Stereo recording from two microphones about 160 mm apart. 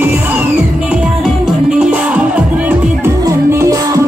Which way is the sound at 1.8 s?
5° right (ahead or behind).